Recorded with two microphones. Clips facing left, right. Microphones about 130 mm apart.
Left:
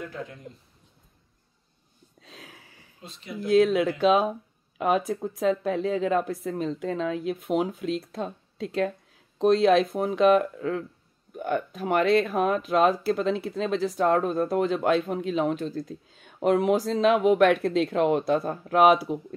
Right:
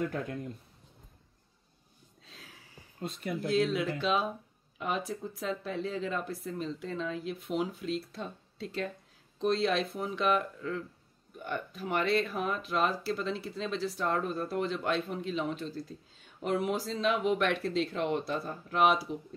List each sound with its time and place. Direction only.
2.2 s a sound: 65° left (ahead or behind)
3.0 s speech: 50° right (ahead or behind)
3.4 s speech: 55° left (ahead or behind)